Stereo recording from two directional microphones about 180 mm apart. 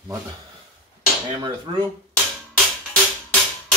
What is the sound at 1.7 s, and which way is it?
Speech, 30° right (ahead or behind).